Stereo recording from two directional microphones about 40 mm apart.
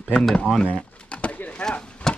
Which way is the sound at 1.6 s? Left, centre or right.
Centre.